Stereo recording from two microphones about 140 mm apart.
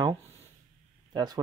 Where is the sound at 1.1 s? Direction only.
30° right (ahead or behind).